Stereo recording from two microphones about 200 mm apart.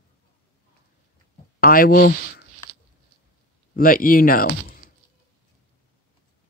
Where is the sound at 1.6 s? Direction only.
45° left (ahead or behind).